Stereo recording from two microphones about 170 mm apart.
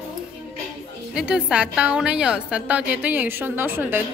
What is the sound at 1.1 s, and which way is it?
A woman's voice, 5° right (ahead or behind).